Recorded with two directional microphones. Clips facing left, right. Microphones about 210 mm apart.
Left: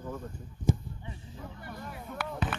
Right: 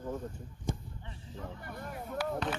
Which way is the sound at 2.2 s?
55° left (ahead or behind).